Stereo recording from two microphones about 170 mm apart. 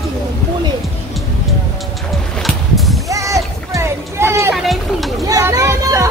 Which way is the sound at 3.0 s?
20° right (ahead or behind).